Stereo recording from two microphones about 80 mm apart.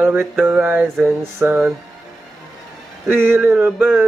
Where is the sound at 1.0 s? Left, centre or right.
Right.